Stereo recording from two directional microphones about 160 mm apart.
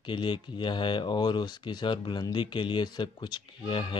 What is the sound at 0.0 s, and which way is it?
Speech, 30° left (ahead or behind).